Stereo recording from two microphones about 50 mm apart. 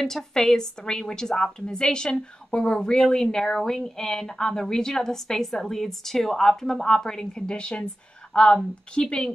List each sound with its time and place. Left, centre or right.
0.0 s a woman's voice: centre